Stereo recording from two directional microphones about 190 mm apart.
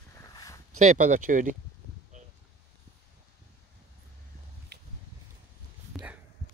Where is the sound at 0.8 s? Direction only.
40° right (ahead or behind).